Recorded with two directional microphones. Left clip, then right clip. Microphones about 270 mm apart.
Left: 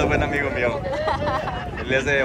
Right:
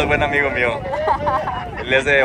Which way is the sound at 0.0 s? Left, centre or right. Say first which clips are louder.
Right 5 dB; centre.